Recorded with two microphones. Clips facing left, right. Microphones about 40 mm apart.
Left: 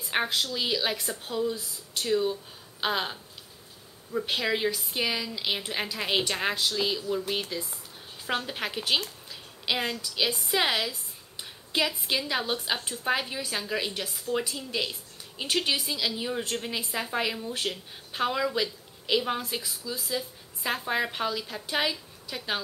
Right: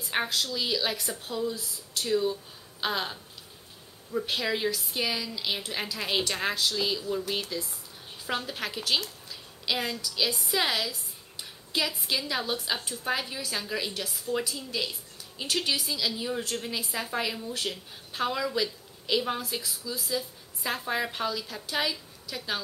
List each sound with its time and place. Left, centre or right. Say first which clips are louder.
0.1 s speech: left 1 dB; centre
9.3 s a sound: left 1 dB; centre
10.0 s a woman's voice: left 1 dB; left